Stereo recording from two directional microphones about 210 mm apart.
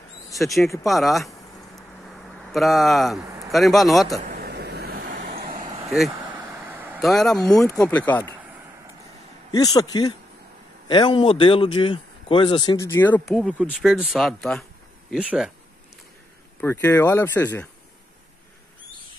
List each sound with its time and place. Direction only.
0.4 s speech: centre (ahead or behind)
2.5 s speech: centre (ahead or behind)
3.3 s a sound: 15° right (ahead or behind)
3.5 s speech: centre (ahead or behind)
4.2 s vehicle: 50° right (ahead or behind)
5.9 s vehicle: 5° right (ahead or behind)
6.7 s speech: 5° right (ahead or behind)
9.5 s speech: 20° left (ahead or behind); by 15.5 s 5° right (ahead or behind)
16.6 s speech: 10° left (ahead or behind)